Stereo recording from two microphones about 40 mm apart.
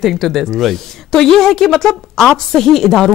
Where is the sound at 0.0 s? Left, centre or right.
Centre.